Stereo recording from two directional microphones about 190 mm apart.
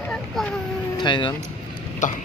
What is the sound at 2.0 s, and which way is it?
Cough, 40° left (ahead or behind).